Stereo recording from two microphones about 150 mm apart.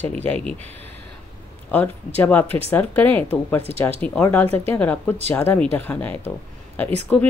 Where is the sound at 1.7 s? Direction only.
10° left (ahead or behind).